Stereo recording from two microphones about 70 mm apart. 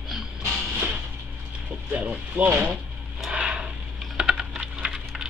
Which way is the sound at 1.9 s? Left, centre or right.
Right.